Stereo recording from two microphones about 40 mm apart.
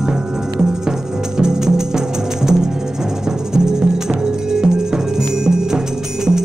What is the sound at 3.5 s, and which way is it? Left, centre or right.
Music, centre.